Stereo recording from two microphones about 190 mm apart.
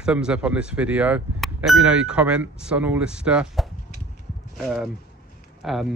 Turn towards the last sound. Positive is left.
turn(degrees=0)  # may be behind; listen again after turning